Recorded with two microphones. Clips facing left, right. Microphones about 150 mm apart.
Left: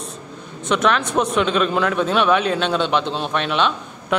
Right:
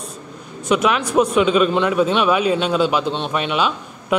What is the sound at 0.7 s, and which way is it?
A man's voice, 10° right (ahead or behind).